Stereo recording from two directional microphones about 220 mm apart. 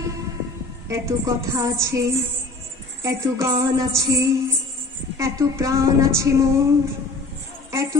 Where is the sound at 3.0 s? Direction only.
15° right (ahead or behind).